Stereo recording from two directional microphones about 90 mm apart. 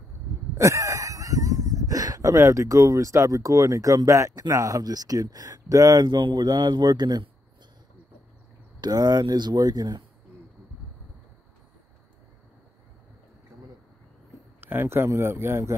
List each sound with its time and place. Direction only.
0.6 s speech: 35° right (ahead or behind)
8.8 s speech: 45° right (ahead or behind)
14.6 s speech: 25° right (ahead or behind)